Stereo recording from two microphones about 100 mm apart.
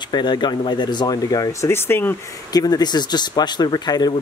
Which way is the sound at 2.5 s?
40° left (ahead or behind).